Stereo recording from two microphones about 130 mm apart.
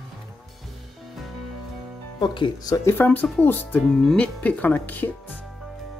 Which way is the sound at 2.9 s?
15° left (ahead or behind).